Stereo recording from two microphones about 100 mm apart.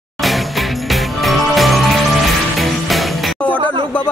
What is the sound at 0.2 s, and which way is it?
Music, centre (ahead or behind).